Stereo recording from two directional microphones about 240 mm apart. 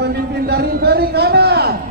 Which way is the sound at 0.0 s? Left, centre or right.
Right.